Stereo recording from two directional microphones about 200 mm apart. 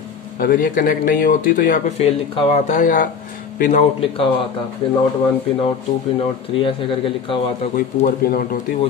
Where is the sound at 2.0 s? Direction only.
30° left (ahead or behind).